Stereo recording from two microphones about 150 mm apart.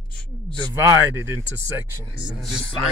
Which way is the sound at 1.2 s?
15° right (ahead or behind).